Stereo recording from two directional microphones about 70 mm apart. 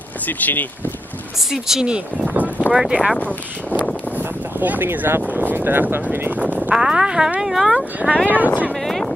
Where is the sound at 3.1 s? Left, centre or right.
Left.